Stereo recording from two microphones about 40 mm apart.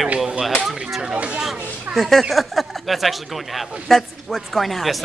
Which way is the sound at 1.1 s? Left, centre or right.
Right.